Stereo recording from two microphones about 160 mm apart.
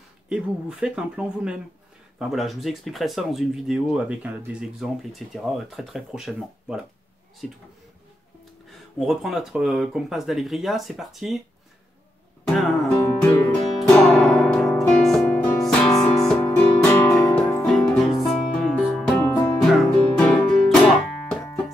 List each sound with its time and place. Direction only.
0.3 s speech: 5° right (ahead or behind)
9.0 s speech: centre (ahead or behind)
12.4 s music: centre (ahead or behind)
17.6 s music: centre (ahead or behind)